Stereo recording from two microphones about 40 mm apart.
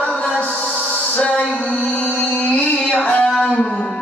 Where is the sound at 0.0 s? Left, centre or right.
Left.